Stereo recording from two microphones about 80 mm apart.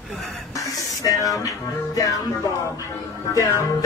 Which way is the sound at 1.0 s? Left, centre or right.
Left.